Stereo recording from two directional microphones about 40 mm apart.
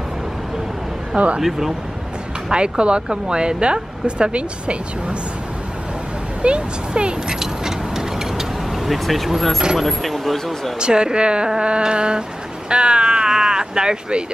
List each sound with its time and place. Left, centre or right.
1.1 s speech: right
2.8 s speech: right
6.4 s speech: right
7.3 s vehicle: centre
9.8 s speech: centre
10.8 s speech: right